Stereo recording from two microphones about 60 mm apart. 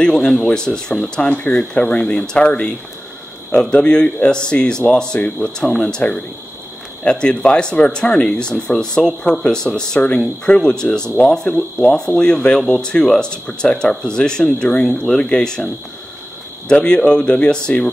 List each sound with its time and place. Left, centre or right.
0.0 s speech: centre
16.6 s speech: centre